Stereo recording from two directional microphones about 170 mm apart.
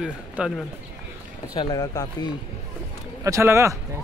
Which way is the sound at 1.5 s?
25° left (ahead or behind).